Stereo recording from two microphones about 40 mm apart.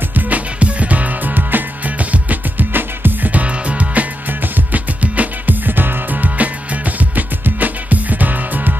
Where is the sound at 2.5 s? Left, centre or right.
Right.